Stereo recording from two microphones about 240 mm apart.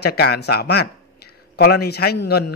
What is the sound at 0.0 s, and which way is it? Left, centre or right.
A man's voice, left.